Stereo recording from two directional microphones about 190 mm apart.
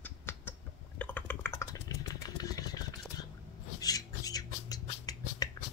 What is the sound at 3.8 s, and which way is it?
Rodents, 20° left (ahead or behind).